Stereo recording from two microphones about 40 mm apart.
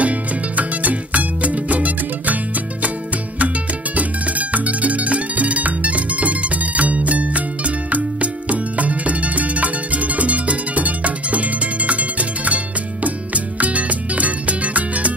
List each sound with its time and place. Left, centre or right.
0.0 s music: right
3.3 s music: right